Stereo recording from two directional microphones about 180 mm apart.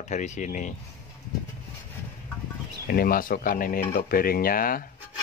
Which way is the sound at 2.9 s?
55° left (ahead or behind).